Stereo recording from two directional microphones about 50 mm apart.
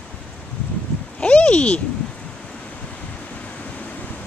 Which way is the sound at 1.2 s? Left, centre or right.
Left.